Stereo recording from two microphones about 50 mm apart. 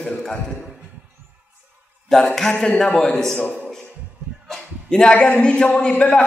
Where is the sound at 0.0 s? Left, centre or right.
Centre.